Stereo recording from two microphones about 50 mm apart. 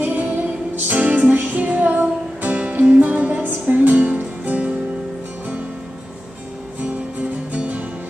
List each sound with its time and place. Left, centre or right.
0.0 s music: right
7.5 s music: right